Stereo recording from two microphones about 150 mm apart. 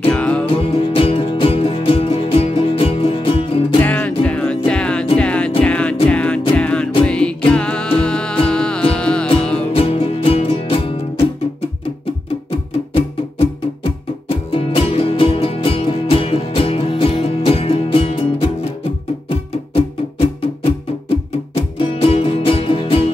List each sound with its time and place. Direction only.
0.1 s music: 10° left (ahead or behind)
0.5 s music: 40° left (ahead or behind)
3.8 s music: 10° left (ahead or behind)
9.7 s music: 40° left (ahead or behind)
14.3 s music: 40° left (ahead or behind)